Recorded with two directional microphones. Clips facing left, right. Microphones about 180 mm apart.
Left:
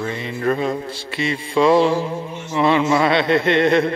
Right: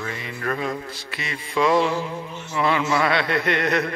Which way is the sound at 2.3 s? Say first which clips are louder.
Left 5 dB; 20° left (ahead or behind).